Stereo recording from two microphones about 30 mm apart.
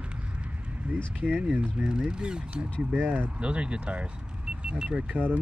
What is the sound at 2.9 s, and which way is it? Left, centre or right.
Speech, right.